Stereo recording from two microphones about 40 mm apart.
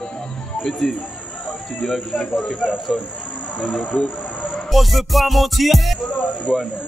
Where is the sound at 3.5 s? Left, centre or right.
Left.